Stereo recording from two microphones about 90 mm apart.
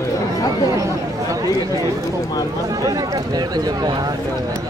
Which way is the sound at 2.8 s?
45° right (ahead or behind).